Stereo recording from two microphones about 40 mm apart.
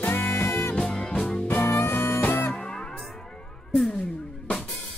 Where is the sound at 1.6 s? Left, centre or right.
Left.